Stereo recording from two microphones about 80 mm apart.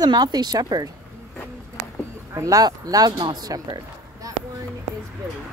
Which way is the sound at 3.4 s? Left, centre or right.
Right.